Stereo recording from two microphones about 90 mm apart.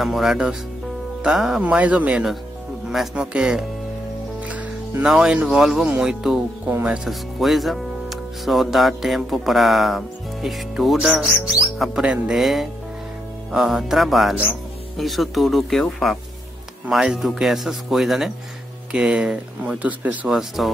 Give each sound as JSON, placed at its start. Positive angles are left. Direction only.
{"t": 0.0, "sound": "speech", "side_deg": -5}
{"t": 1.6, "sound": "speech", "side_deg": -15}
{"t": 4.5, "sound": "music", "side_deg": -15}
{"t": 5.1, "sound": "speech", "side_deg": -10}
{"t": 6.7, "sound": "speech", "side_deg": -20}
{"t": 7.1, "sound": "speech", "side_deg": 0}
{"t": 16.9, "sound": "speech", "side_deg": -5}
{"t": 20.2, "sound": "speech", "side_deg": -5}